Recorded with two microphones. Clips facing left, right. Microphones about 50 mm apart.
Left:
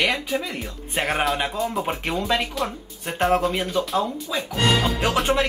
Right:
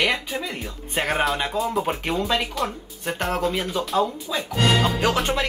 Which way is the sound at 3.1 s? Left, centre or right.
Centre.